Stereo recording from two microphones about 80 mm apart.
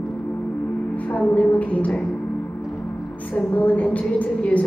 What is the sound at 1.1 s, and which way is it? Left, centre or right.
Speech, centre.